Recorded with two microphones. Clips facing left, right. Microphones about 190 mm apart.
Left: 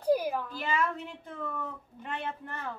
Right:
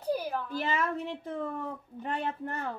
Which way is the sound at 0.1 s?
10° left (ahead or behind).